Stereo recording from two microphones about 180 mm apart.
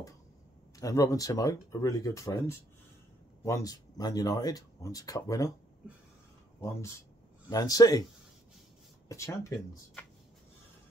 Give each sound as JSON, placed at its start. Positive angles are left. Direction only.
{"t": 0.7, "sound": "speech", "side_deg": 20}
{"t": 7.4, "sound": "speech", "side_deg": 20}
{"t": 9.1, "sound": "speech", "side_deg": 15}